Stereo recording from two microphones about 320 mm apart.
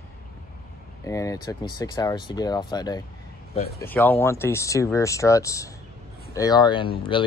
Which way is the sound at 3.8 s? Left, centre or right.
Centre.